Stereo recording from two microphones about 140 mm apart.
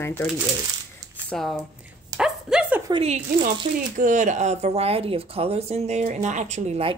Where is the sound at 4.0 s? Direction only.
60° right (ahead or behind).